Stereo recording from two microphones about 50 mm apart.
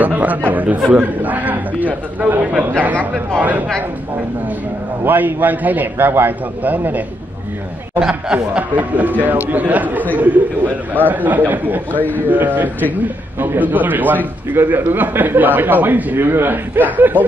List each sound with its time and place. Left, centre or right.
0.0 s a man's voice: right
5.0 s a man's voice: right
8.0 s speech: centre
8.7 s a man's voice: right
11.9 s a man's voice: left
12.3 s a man's voice: right
16.3 s a man's voice: right